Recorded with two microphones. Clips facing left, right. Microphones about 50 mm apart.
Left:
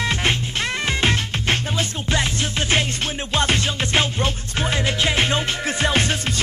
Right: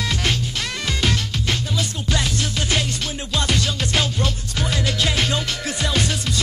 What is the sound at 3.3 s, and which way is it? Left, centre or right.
Music, left.